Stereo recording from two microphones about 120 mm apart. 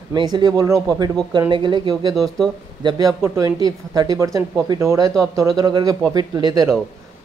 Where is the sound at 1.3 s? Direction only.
40° right (ahead or behind).